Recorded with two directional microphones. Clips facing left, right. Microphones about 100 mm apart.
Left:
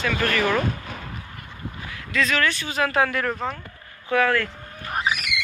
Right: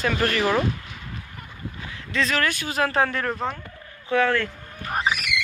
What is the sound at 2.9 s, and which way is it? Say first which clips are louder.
Speech: left 3 dB; 30° right (ahead or behind).